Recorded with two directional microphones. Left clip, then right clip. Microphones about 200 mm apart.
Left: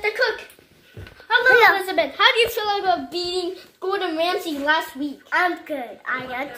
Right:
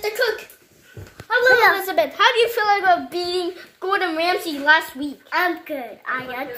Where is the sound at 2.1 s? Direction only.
15° right (ahead or behind).